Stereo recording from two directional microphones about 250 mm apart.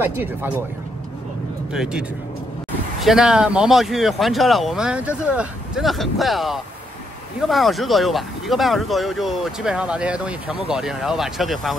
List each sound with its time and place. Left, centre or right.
0.0 s speech: centre
1.7 s speech: centre